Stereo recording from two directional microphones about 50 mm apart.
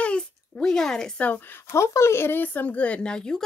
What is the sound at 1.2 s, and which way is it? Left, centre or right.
Speech, left.